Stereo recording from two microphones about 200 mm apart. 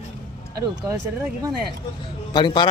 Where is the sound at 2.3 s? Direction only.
25° left (ahead or behind).